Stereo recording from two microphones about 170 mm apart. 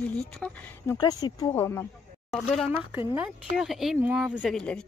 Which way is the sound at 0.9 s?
20° left (ahead or behind).